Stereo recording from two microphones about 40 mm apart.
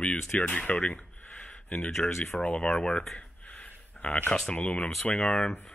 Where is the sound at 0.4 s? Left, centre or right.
Left.